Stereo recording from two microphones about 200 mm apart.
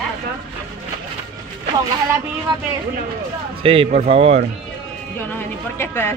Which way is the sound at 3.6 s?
30° right (ahead or behind).